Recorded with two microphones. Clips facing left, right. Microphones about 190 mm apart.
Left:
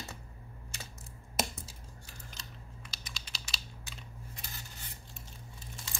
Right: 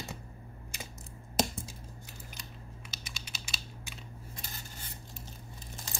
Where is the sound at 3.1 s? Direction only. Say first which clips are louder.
Even; 15° right (ahead or behind).